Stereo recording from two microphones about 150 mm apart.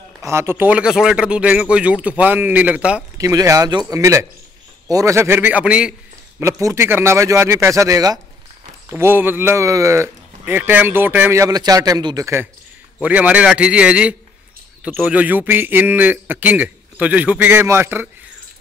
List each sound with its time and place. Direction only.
0.2 s a man's voice: 15° right (ahead or behind)
3.2 s a man's voice: 20° right (ahead or behind)
6.4 s a man's voice: 20° right (ahead or behind)
13.0 s a man's voice: 10° right (ahead or behind)